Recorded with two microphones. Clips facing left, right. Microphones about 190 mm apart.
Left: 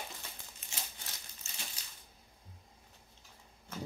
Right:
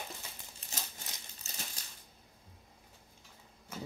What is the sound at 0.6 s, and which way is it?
Crumpling, 35° right (ahead or behind).